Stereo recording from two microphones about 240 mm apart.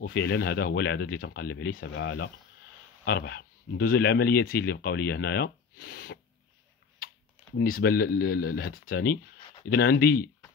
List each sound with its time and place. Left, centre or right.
0.0 s speech: left
7.5 s speech: left